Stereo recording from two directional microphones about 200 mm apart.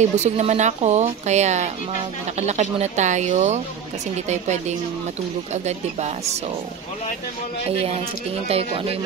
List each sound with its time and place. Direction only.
0.0 s a woman's voice: 35° right (ahead or behind)
7.7 s speech: 30° right (ahead or behind)